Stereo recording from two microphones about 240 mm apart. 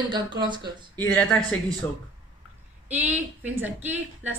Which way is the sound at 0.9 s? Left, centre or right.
Centre.